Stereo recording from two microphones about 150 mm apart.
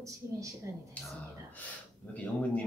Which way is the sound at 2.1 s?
10° left (ahead or behind).